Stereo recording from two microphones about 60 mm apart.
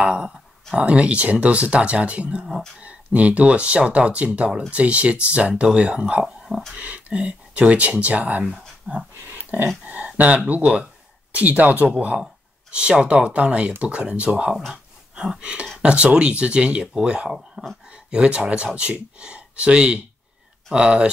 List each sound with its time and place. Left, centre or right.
0.0 s speech: centre
6.2 s speech: centre
6.8 s speech: right
8.5 s speech: centre
9.3 s dog: right
9.8 s speech: right
14.7 s a sound: centre
15.8 s speech: centre